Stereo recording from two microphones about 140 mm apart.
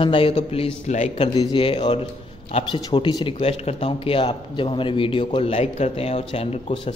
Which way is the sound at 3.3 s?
45° left (ahead or behind).